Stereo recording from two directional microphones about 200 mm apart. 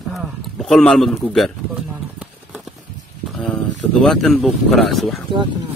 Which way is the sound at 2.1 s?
5° right (ahead or behind).